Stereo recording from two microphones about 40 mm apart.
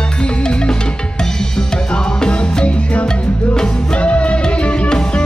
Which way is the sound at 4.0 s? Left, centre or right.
Left.